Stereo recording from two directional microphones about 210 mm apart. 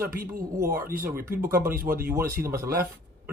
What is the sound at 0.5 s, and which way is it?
Music, 10° right (ahead or behind).